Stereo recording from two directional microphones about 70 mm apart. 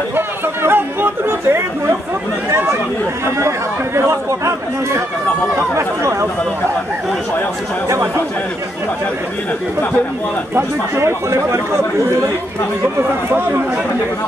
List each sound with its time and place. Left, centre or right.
0.1 s chatter: right
2.5 s speech: right
10.5 s speech: right